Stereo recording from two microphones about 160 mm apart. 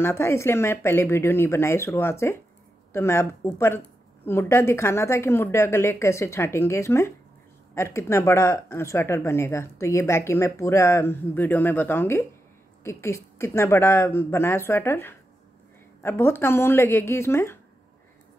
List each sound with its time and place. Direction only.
0.0 s speech: 15° left (ahead or behind)